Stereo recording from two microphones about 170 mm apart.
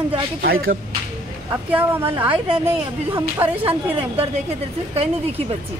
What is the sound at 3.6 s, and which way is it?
Speech, 35° right (ahead or behind).